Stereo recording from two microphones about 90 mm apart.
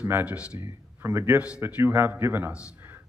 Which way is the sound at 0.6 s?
30° right (ahead or behind).